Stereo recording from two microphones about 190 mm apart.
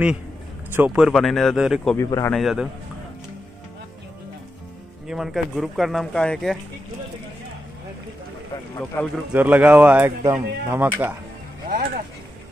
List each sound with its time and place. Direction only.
0.7 s speech: 5° right (ahead or behind)
2.0 s a man's voice: 15° left (ahead or behind)
2.3 s speech: centre (ahead or behind)
5.0 s speech: centre (ahead or behind)
8.7 s a man's voice: 10° left (ahead or behind)
9.3 s speech: 10° right (ahead or behind)
11.7 s a sound: 45° right (ahead or behind)